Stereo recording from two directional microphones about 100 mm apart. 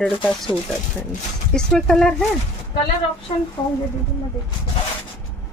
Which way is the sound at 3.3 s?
70° left (ahead or behind).